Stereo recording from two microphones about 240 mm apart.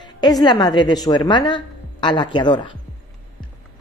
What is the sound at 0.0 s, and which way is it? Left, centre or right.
A woman's voice, centre.